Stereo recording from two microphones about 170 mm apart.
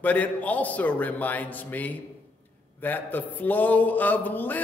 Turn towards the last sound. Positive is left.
turn(degrees=10)  # may be behind; listen again after turning